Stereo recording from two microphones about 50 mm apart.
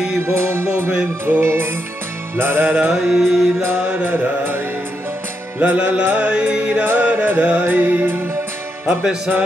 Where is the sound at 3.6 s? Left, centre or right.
Right.